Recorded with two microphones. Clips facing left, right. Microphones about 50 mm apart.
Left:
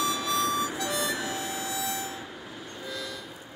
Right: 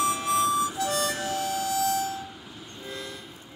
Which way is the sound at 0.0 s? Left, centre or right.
Left.